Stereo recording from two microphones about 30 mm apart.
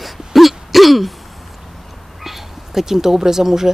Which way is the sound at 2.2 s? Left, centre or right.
Centre.